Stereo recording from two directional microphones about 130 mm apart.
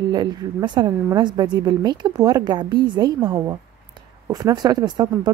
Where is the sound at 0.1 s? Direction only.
35° right (ahead or behind).